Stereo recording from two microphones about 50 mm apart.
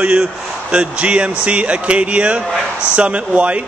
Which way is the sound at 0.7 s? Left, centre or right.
Right.